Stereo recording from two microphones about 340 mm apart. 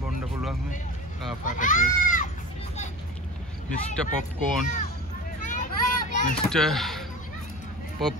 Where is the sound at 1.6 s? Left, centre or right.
Left.